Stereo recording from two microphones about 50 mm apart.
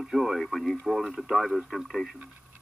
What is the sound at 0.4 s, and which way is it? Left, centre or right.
Speech, centre.